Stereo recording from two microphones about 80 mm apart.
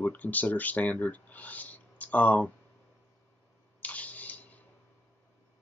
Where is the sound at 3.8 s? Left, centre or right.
Centre.